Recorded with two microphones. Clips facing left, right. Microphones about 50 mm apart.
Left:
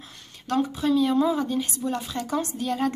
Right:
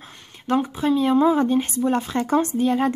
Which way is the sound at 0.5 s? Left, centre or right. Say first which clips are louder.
Right 3 dB; right.